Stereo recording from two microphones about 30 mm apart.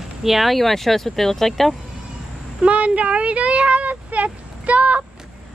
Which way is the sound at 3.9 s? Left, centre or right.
Right.